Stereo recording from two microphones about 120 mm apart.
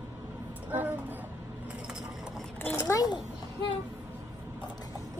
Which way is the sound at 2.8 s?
30° left (ahead or behind).